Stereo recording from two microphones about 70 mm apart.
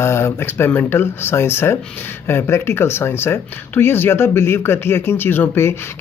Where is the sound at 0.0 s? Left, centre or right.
Left.